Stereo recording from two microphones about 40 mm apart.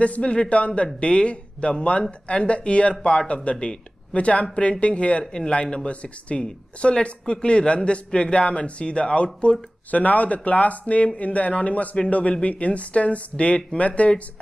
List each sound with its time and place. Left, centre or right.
0.0 s speech: left
5.2 s speech: centre
9.8 s speech: left